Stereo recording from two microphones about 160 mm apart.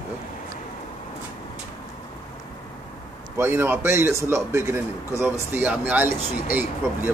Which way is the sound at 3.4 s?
15° right (ahead or behind).